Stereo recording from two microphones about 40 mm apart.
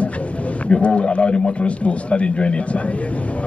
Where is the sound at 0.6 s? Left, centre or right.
Left.